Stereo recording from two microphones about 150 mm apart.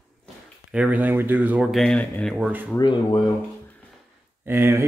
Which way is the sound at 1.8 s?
5° left (ahead or behind).